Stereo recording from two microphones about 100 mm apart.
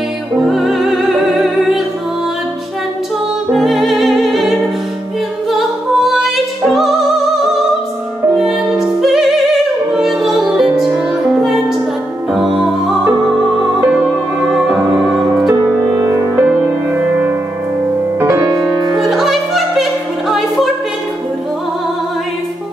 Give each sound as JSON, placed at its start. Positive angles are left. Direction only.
{"t": 0.4, "sound": "music", "side_deg": 0}
{"t": 3.5, "sound": "music", "side_deg": 0}
{"t": 5.5, "sound": "opera", "side_deg": 0}
{"t": 8.4, "sound": "music", "side_deg": -5}
{"t": 12.5, "sound": "music", "side_deg": -5}
{"t": 14.4, "sound": "music", "side_deg": -5}
{"t": 16.0, "sound": "music", "side_deg": -30}
{"t": 16.4, "sound": "music", "side_deg": -15}
{"t": 18.2, "sound": "music", "side_deg": -25}
{"t": 18.9, "sound": "music", "side_deg": 0}